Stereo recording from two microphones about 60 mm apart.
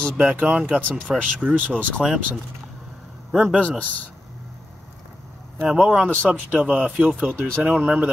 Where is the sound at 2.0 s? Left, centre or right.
Centre.